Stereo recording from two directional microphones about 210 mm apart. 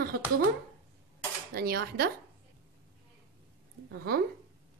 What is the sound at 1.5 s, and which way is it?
Speech, 45° right (ahead or behind).